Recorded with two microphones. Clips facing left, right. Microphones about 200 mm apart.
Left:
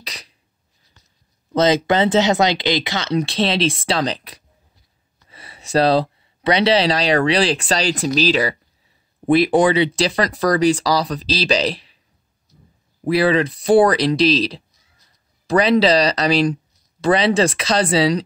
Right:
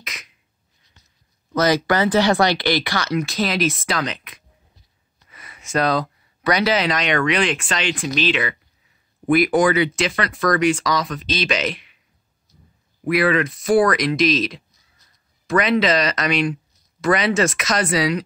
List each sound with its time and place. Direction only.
0.0 s a sound: 35° left (ahead or behind)
1.5 s speech: 25° left (ahead or behind)
13.0 s speech: 30° left (ahead or behind)